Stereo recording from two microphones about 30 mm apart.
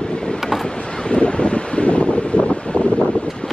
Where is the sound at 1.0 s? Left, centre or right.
Left.